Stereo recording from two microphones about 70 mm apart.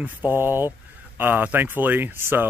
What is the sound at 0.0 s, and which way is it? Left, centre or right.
Speech, right.